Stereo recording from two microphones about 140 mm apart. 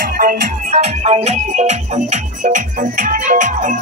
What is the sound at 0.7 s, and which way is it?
Music, 50° right (ahead or behind).